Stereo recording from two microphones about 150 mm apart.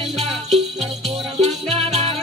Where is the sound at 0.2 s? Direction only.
45° right (ahead or behind).